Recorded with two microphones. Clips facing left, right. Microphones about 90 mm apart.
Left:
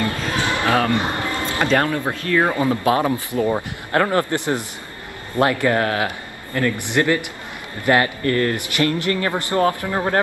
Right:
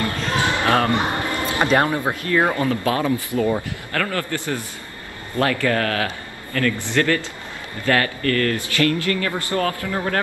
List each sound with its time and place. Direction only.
0.7 s speech: 20° right (ahead or behind)
2.5 s speech: 20° left (ahead or behind)